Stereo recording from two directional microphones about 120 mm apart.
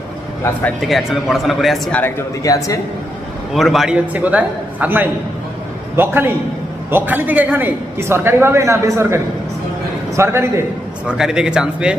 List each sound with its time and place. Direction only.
0.7 s speech: centre (ahead or behind)
1.9 s speech: 15° left (ahead or behind)
2.4 s a man's voice: 25° left (ahead or behind)
3.5 s a man's voice: centre (ahead or behind); by 10.6 s 20° right (ahead or behind)
11.1 s a man's voice: 5° right (ahead or behind)